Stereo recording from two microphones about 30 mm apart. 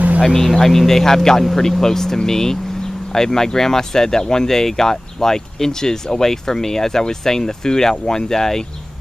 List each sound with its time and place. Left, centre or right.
0.2 s speech: centre